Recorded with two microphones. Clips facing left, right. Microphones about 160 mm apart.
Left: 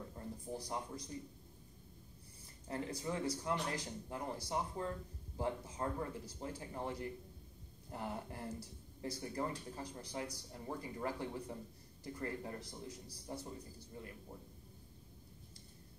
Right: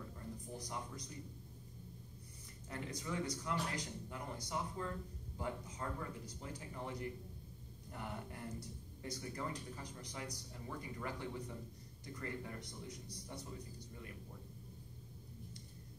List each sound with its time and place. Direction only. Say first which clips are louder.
0.5 s a man's voice: left 5 dB; 30° left (ahead or behind)
2.7 s a man's voice: left 3 dB; 30° left (ahead or behind)